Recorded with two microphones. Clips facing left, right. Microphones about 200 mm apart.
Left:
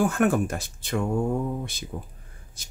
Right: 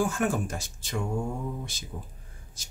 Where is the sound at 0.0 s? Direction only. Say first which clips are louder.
Left 5 dB; 60° left (ahead or behind).